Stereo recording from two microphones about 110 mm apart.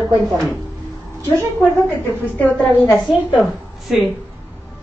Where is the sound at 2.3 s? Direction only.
15° left (ahead or behind).